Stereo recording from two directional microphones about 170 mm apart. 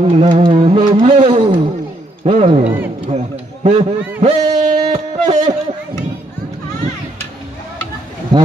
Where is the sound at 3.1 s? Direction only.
35° right (ahead or behind).